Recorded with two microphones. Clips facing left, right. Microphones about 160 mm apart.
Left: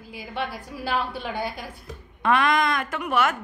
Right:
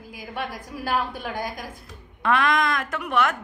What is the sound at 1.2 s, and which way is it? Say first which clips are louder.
Speech: left 1 dB; 45° right (ahead or behind).